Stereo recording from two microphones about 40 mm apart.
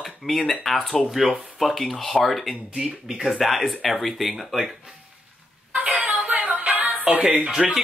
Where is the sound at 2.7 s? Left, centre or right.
Centre.